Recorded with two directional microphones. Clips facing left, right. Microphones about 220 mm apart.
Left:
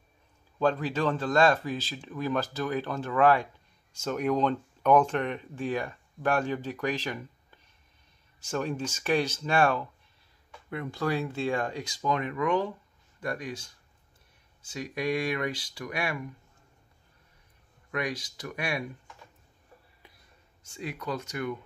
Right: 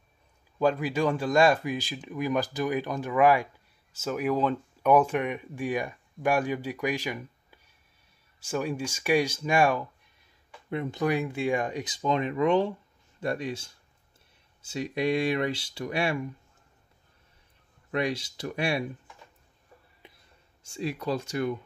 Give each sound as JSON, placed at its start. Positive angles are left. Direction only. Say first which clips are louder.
{"t": 0.6, "sound": "speech", "louder": "right 2 dB", "side_deg": -10}
{"t": 14.7, "sound": "speech", "louder": "right 3 dB", "side_deg": -25}
{"t": 17.9, "sound": "speech", "louder": "right 4 dB", "side_deg": -25}
{"t": 20.6, "sound": "speech", "louder": "right 5 dB", "side_deg": -30}